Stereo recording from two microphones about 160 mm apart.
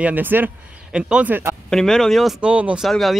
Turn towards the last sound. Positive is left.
turn(degrees=0)  # may be behind; listen again after turning